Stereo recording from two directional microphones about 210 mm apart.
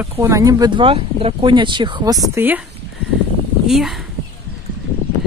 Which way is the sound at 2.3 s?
10° right (ahead or behind).